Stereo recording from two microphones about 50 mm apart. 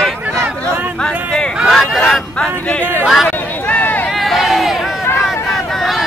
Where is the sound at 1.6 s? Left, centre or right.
Centre.